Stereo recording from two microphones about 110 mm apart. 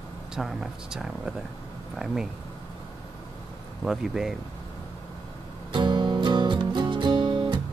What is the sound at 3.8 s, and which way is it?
Speech, 5° right (ahead or behind).